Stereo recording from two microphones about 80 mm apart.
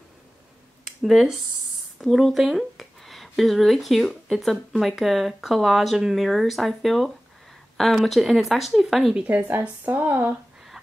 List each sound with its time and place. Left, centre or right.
0.8 s a sound: centre
2.0 s speech: centre
9.1 s speech: centre